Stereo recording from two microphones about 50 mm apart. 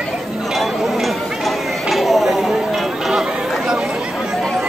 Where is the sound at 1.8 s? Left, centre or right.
Centre.